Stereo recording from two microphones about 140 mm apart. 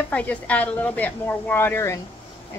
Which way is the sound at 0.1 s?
10° left (ahead or behind).